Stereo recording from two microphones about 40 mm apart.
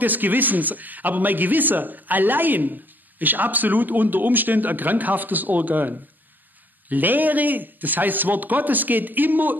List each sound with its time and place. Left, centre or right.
0.0 s speech: right